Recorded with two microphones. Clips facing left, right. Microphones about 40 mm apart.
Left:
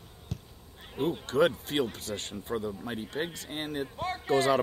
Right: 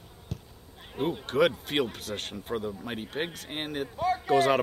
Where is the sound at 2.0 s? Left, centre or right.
Right.